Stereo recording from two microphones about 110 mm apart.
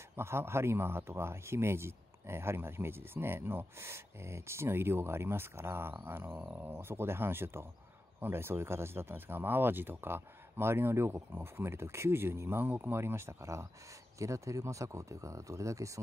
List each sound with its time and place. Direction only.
0.1 s speech: 20° right (ahead or behind)